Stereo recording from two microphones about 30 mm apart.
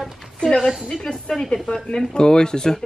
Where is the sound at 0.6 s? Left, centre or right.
Right.